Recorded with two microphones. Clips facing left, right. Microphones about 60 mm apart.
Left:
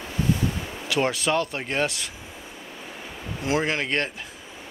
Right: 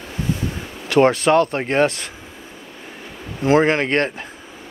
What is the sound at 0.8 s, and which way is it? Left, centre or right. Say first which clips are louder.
Speech: right 10 dB; right.